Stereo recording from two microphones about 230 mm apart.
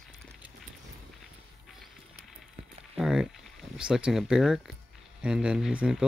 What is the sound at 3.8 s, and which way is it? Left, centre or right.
Speech, centre.